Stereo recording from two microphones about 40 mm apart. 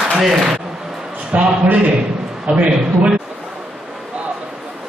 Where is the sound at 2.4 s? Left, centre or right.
Right.